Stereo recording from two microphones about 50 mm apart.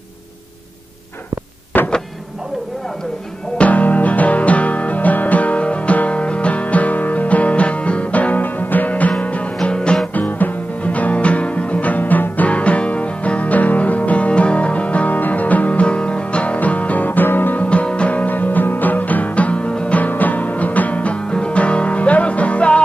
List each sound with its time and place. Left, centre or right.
1.7 s power windows: left
3.5 s music: left
10.1 s music: left
17.6 s music: left
20.0 s music: left